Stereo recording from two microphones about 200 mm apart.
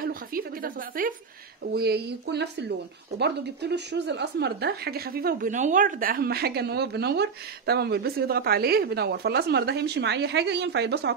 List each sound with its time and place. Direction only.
0.0 s a woman's voice: 45° right (ahead or behind)